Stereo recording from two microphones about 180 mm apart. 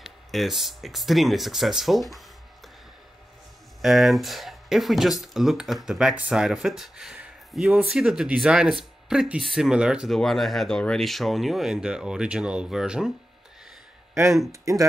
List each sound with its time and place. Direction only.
0.0 s speech: centre (ahead or behind)
3.8 s speech: centre (ahead or behind)
14.5 s speech: 15° right (ahead or behind)